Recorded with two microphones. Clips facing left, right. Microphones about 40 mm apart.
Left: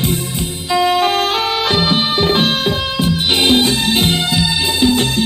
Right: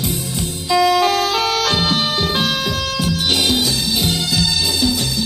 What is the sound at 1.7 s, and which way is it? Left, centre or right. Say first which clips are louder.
Music: left 3 dB; left.